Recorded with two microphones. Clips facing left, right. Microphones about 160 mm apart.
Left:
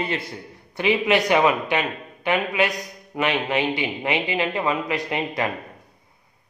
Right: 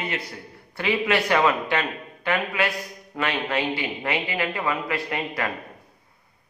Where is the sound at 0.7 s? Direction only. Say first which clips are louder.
Left 3 dB; 20° left (ahead or behind).